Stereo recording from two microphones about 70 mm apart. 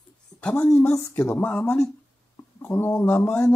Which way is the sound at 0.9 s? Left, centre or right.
Left.